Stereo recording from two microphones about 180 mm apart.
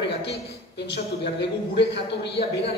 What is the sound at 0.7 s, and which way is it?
A man's voice, 70° left (ahead or behind).